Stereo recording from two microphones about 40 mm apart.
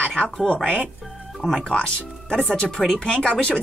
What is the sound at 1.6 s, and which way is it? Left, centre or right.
Speech, left.